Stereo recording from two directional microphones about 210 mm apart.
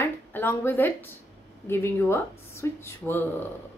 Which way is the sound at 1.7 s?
10° left (ahead or behind).